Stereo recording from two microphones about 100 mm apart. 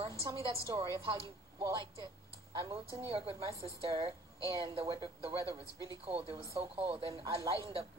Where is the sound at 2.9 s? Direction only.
70° right (ahead or behind).